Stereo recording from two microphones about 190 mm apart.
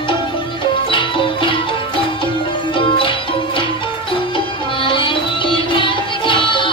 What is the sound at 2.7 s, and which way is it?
Music, 25° left (ahead or behind).